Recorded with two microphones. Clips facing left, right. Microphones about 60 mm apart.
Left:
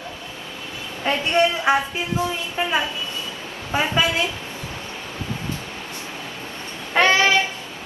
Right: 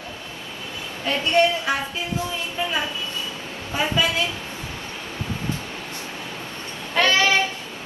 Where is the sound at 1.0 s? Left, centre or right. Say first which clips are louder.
Even; left.